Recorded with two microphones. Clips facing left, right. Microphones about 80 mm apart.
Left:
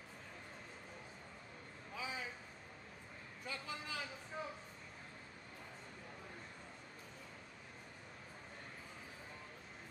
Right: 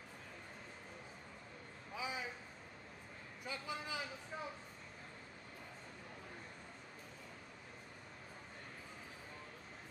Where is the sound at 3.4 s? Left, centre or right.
Centre.